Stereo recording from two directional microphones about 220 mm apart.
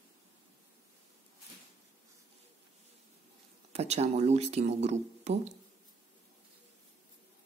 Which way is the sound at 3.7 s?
30° right (ahead or behind).